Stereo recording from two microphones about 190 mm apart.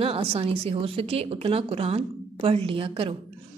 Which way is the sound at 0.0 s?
30° right (ahead or behind).